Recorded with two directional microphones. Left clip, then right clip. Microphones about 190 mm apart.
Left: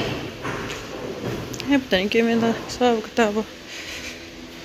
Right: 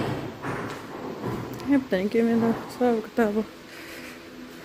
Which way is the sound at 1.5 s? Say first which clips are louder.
Left 4 dB; 15° right (ahead or behind).